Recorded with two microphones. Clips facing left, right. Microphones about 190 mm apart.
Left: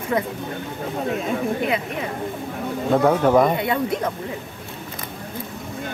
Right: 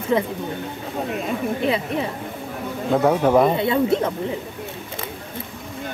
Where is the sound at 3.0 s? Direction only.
5° right (ahead or behind).